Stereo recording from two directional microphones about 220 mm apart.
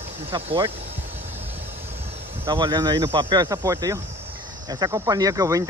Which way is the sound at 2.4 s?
20° right (ahead or behind).